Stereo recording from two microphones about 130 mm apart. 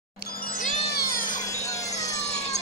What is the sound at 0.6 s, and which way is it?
Music, 80° left.